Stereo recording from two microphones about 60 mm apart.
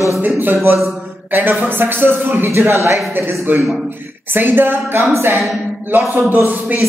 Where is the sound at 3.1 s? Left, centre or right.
Right.